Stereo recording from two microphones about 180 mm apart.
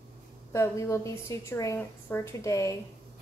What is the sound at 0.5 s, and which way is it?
A woman's voice, 15° left (ahead or behind).